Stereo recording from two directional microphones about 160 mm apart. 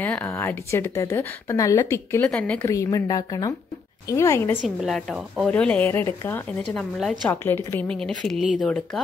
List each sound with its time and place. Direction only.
0.0 s a woman's voice: 10° left (ahead or behind)
2.7 s a woman's voice: 20° left (ahead or behind)
4.6 s a woman's voice: centre (ahead or behind)